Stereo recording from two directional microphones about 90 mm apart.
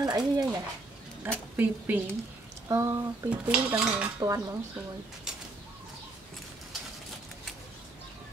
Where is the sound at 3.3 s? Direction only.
10° right (ahead or behind).